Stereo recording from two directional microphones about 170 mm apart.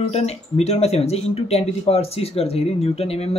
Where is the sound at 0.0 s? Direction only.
40° left (ahead or behind).